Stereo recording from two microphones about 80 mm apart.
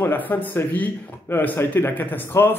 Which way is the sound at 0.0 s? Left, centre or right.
Left.